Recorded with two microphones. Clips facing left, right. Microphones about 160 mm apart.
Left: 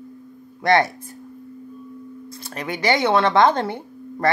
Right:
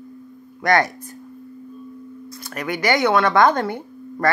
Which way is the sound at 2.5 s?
25° left (ahead or behind).